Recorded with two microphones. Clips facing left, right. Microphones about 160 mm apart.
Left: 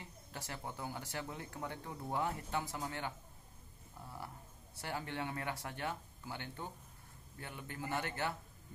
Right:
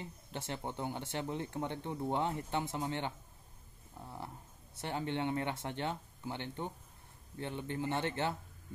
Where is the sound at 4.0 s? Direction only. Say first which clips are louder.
Right 3 dB; 20° right (ahead or behind).